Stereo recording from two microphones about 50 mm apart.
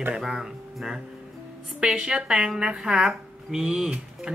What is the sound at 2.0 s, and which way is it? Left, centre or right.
Speech, centre.